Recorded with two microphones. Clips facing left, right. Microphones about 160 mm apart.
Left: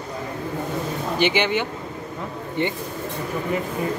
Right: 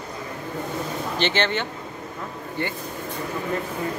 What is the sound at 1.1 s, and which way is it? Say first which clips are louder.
Speech: left 3 dB; 10° left (ahead or behind).